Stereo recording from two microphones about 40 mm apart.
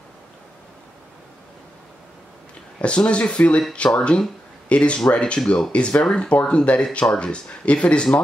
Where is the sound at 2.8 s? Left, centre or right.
Left.